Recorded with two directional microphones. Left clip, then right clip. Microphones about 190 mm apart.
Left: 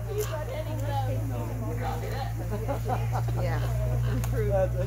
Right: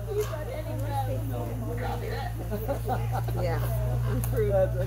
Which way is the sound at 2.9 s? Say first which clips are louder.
Even; 55° right (ahead or behind).